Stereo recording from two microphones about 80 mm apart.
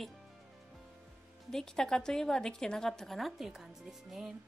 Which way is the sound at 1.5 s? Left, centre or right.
Centre.